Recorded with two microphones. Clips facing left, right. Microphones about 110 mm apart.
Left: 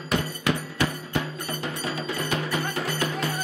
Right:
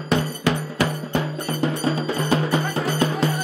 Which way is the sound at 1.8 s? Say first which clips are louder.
Right 7 dB; 30° right (ahead or behind).